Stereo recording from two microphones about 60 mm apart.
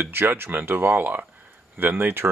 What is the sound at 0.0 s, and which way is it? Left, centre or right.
Speech, right.